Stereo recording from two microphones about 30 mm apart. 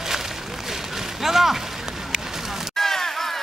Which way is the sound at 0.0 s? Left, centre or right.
Centre.